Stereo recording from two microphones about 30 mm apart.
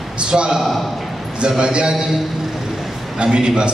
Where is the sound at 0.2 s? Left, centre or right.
Right.